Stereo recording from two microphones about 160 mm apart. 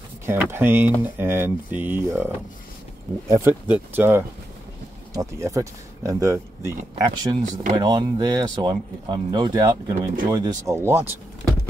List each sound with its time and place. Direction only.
0.3 s speech: 15° right (ahead or behind)